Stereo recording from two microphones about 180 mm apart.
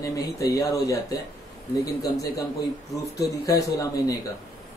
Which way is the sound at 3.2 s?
20° left (ahead or behind).